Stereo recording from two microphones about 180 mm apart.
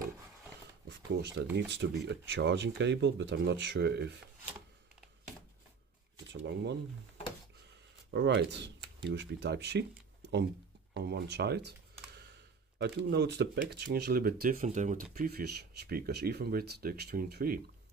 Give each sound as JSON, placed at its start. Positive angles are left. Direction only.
{"t": 0.8, "sound": "speech", "side_deg": -75}
{"t": 6.3, "sound": "speech", "side_deg": -75}
{"t": 8.1, "sound": "speech", "side_deg": -70}
{"t": 10.9, "sound": "speech", "side_deg": -65}
{"t": 15.1, "sound": "speech", "side_deg": -60}